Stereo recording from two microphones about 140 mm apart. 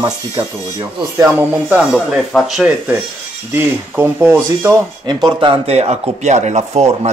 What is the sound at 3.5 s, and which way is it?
Speech, 15° right (ahead or behind).